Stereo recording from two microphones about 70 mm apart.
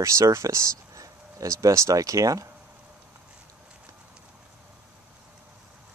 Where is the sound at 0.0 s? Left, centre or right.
Right.